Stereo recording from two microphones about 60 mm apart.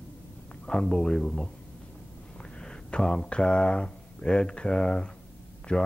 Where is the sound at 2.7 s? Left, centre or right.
Centre.